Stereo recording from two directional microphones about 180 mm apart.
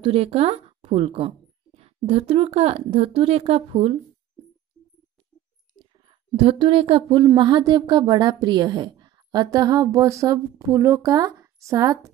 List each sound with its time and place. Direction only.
0.0 s speech: 30° right (ahead or behind)
6.0 s a woman's voice: 30° right (ahead or behind)